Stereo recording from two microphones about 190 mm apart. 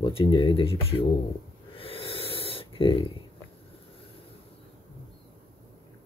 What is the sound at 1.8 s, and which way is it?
Snort, 30° left (ahead or behind).